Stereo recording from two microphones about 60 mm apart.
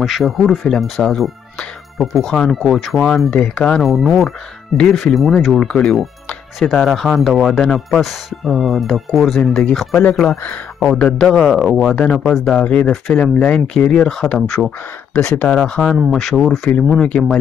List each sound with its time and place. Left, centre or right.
0.0 s speech: centre
3.3 s speech: centre
3.8 s speech: centre
5.6 s speech: centre
10.3 s speech: left
11.1 s speech: centre
11.5 s speech: centre
11.9 s speech: centre
12.3 s speech: centre
13.2 s speech: centre
15.1 s speech: centre
16.9 s speech: centre